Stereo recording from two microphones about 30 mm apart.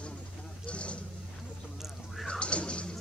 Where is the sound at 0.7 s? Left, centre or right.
Left.